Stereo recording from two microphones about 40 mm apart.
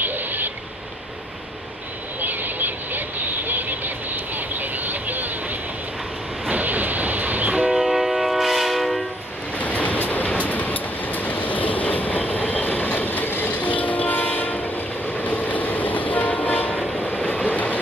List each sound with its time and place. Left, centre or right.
0.0 s a sound: right
2.2 s vehicle: right
6.5 s train: right
7.8 s train: centre
9.6 s waves: left
9.9 s train: left
13.5 s train: left